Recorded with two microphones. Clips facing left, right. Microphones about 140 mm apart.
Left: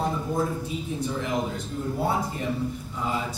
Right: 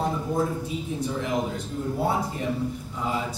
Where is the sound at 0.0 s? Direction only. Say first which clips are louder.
Right 1 dB; centre (ahead or behind).